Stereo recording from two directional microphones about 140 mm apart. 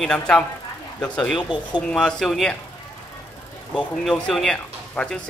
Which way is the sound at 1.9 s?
5° left (ahead or behind).